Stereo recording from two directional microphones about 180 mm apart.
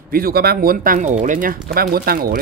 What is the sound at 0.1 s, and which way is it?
Speech, 55° right (ahead or behind).